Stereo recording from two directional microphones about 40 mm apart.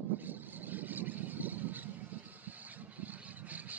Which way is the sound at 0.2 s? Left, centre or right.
Right.